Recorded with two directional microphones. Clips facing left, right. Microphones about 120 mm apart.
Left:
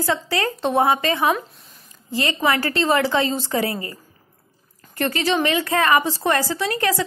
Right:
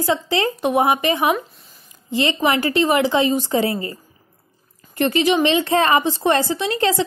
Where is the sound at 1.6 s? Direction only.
Centre (ahead or behind).